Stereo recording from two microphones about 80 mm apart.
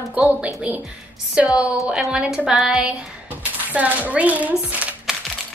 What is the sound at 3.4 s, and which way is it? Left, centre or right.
Speech, centre.